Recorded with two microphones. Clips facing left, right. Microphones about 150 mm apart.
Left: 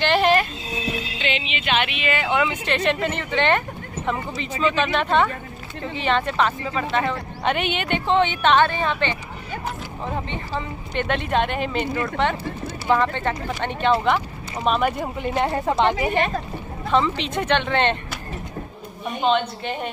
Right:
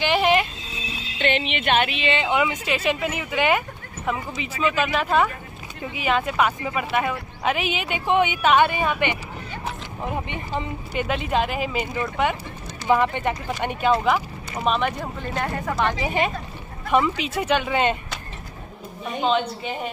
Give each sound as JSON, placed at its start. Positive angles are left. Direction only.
{"t": 0.0, "sound": "horse", "side_deg": -10}
{"t": 1.3, "sound": "a sound", "side_deg": -55}
{"t": 2.2, "sound": "speech", "side_deg": -15}
{"t": 11.1, "sound": "speech", "side_deg": -5}
{"t": 15.3, "sound": "a woman's voice", "side_deg": 25}
{"t": 16.9, "sound": "speech", "side_deg": -10}
{"t": 19.2, "sound": "speech", "side_deg": -5}